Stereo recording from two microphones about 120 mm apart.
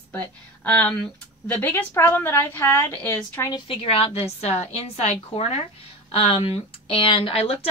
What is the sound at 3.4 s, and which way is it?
A woman's voice, 45° left (ahead or behind).